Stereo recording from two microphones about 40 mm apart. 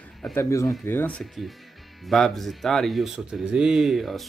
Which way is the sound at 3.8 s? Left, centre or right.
Centre.